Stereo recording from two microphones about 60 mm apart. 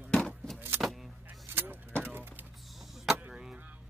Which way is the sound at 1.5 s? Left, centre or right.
Right.